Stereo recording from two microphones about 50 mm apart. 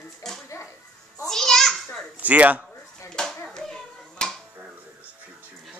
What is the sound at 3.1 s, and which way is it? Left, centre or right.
Hands, centre.